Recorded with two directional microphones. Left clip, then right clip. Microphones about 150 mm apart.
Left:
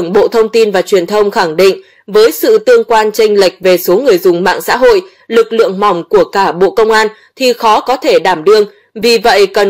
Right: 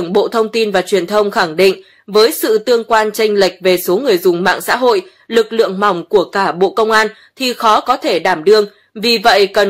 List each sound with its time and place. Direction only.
0.0 s speech: 15° left (ahead or behind)